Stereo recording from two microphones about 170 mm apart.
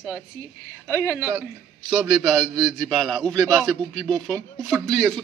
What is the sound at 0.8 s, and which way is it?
Speech, 10° left (ahead or behind).